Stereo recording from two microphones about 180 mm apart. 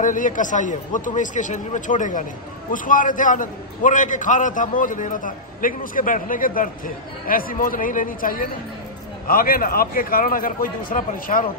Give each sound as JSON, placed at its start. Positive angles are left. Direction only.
{"t": 0.0, "sound": "a man's voice", "side_deg": 45}